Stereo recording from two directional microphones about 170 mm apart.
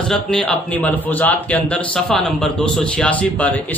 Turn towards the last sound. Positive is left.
turn(degrees=10)  # may be behind; listen again after turning